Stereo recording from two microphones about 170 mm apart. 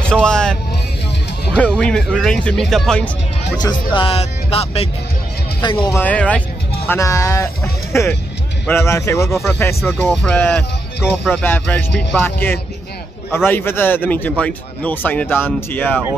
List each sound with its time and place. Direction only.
0.1 s speech: 5° left (ahead or behind)
3.5 s speech: 25° left (ahead or behind)
5.9 s speech: 10° left (ahead or behind)
6.9 s speech: 20° left (ahead or behind)
9.3 s speech: centre (ahead or behind)